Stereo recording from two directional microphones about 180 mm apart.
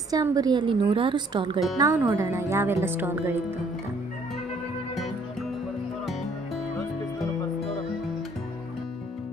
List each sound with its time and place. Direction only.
0.1 s a woman's voice: 20° right (ahead or behind)